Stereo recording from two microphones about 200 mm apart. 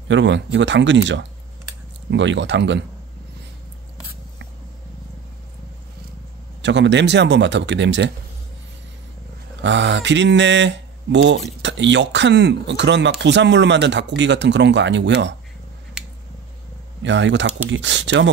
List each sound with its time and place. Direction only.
0.1 s speech: 65° right (ahead or behind)
6.6 s speech: 60° right (ahead or behind)
9.6 s speech: 65° right (ahead or behind)
17.0 s speech: 65° right (ahead or behind)